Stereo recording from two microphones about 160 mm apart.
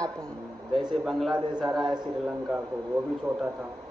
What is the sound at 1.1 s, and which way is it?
Speech, centre (ahead or behind).